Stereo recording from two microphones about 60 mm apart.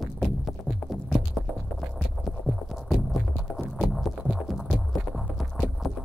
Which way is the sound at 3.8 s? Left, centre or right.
Centre.